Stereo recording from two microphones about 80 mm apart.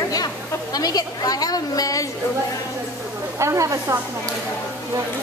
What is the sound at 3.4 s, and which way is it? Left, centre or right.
Speech, right.